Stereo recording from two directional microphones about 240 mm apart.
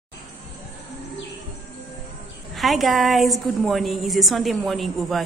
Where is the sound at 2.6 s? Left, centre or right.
Centre.